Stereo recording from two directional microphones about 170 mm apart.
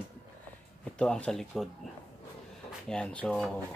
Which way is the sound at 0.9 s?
5° left (ahead or behind).